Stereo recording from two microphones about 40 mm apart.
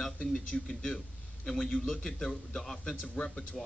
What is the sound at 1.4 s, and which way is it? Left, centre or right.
A man's voice, centre.